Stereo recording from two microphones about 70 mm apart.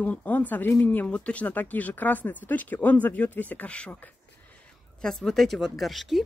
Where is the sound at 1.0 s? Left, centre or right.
Centre.